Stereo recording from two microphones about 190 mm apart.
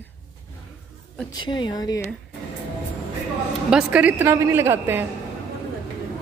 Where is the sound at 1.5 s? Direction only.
20° left (ahead or behind).